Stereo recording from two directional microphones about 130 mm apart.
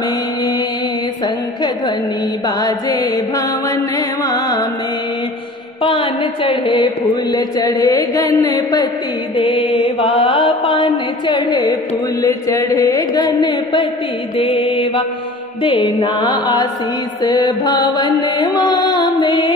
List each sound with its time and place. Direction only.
2.4 s music: 30° left (ahead or behind)
5.8 s mantra: 45° left (ahead or behind)
7.3 s music: 30° left (ahead or behind)
9.4 s mantra: 45° left (ahead or behind)
11.2 s music: 35° left (ahead or behind)
12.2 s a sound: 25° left (ahead or behind)
14.4 s mantra: 45° left (ahead or behind)
15.6 s music: 45° left (ahead or behind)
16.0 s mantra: 35° left (ahead or behind)